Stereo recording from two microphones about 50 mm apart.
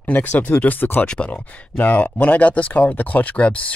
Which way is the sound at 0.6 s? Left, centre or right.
Left.